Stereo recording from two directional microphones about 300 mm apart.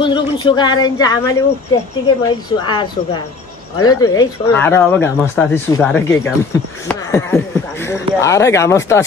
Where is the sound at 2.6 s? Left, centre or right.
Centre.